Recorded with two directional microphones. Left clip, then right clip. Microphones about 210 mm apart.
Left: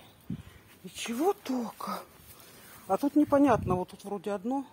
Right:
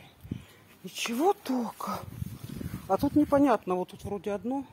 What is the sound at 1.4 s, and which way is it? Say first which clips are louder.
Speech: right 2 dB; 10° right (ahead or behind).